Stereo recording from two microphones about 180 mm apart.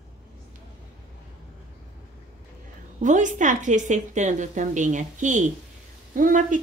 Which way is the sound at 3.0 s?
45° right (ahead or behind).